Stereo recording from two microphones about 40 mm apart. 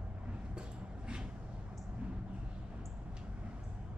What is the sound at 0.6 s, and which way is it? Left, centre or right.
Dog, right.